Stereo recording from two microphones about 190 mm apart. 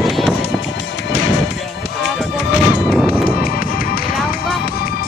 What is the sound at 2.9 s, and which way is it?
Music, 5° right (ahead or behind).